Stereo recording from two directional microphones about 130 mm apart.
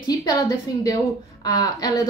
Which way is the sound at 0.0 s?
30° left (ahead or behind).